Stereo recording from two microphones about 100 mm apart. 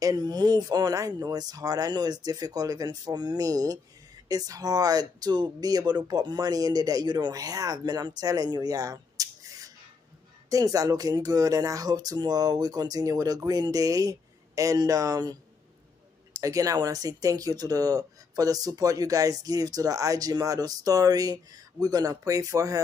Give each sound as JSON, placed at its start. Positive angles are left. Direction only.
{"t": 0.0, "sound": "speech", "side_deg": -40}
{"t": 10.5, "sound": "speech", "side_deg": -35}
{"t": 16.3, "sound": "speech", "side_deg": -35}